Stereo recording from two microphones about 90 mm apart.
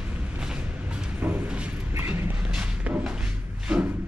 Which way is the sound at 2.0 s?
25° right (ahead or behind).